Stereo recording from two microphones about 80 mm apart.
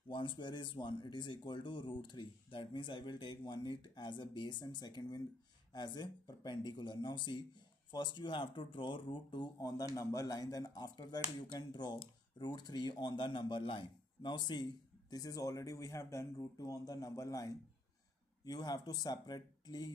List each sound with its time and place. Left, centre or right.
0.1 s speech: left
9.6 s a man's voice: left
18.4 s speech: left